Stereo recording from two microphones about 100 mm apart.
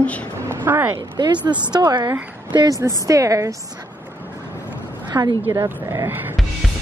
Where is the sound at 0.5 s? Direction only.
20° right (ahead or behind).